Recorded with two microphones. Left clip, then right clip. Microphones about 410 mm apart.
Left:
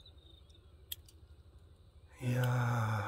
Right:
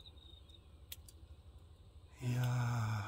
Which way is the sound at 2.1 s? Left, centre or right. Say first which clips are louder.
Left 6 dB; centre.